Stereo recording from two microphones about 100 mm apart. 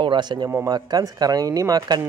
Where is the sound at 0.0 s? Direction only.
50° right (ahead or behind).